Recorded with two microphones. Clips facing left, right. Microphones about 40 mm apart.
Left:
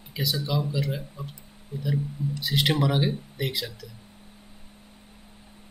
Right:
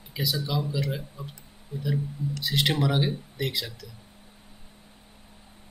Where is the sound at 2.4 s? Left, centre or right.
Centre.